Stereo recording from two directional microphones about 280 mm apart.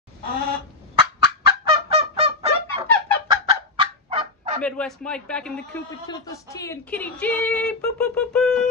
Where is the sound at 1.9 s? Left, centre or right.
Right.